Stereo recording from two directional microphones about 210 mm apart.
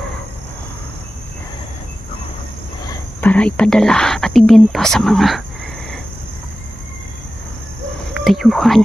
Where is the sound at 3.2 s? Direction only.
5° left (ahead or behind).